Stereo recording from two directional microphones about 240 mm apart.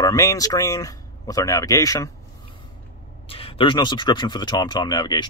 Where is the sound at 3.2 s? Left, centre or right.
Left.